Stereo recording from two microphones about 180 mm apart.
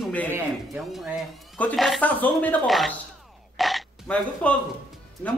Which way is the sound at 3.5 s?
Centre (ahead or behind).